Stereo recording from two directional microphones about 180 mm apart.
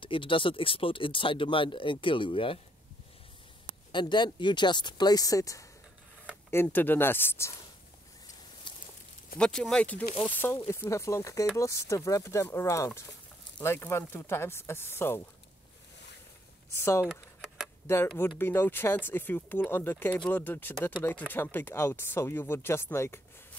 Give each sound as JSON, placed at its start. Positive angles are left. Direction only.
{"t": 0.0, "sound": "speech", "side_deg": 30}
{"t": 3.9, "sound": "speech", "side_deg": 25}
{"t": 8.7, "sound": "a sound", "side_deg": 25}
{"t": 9.4, "sound": "speech", "side_deg": 5}
{"t": 16.7, "sound": "speech", "side_deg": 15}
{"t": 17.0, "sound": "a sound", "side_deg": 0}
{"t": 17.8, "sound": "speech", "side_deg": 15}